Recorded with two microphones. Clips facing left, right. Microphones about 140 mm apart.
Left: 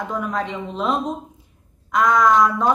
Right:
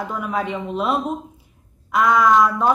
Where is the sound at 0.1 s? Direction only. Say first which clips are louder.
Even; 5° right (ahead or behind).